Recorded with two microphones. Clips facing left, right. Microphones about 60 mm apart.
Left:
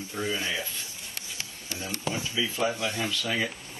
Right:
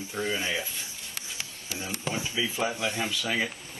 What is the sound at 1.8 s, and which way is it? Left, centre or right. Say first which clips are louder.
Speech: even; right.